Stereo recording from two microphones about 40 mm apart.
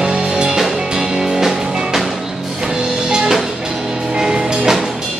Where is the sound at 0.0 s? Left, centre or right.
Right.